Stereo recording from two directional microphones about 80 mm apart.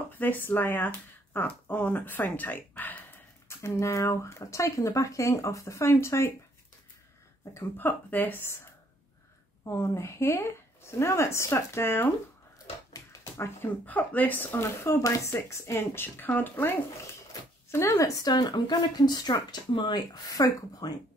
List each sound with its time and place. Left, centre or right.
0.2 s speech: left
3.4 s speech: left
7.7 s speech: left
9.7 s speech: left
13.2 s speech: left
17.6 s speech: left
18.2 s speech: left
20.2 s speech: left